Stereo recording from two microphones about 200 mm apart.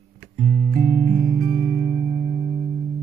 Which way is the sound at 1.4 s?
40° right (ahead or behind).